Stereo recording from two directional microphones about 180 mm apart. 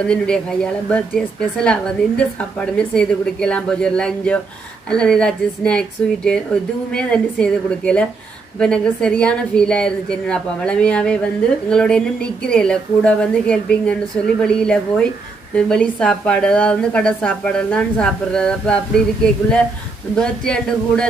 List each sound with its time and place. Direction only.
0.0 s a woman's voice: 5° left (ahead or behind)
20.2 s a woman's voice: 5° left (ahead or behind)